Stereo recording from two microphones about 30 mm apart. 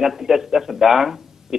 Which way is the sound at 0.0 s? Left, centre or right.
Centre.